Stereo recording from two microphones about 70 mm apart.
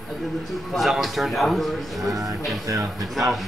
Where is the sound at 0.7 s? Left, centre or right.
Centre.